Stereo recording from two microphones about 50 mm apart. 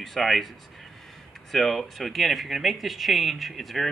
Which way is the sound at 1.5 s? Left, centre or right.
Centre.